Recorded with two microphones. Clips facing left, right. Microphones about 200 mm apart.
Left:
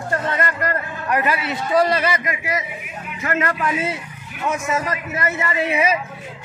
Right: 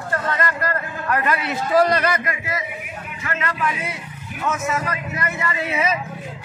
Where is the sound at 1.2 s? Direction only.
5° left (ahead or behind).